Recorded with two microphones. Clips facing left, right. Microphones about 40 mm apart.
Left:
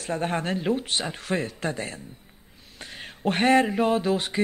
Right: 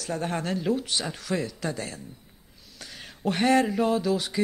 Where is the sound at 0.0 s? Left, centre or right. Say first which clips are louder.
Left 2 dB; left.